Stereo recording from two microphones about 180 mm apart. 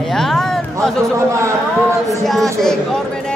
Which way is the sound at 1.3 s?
15° right (ahead or behind).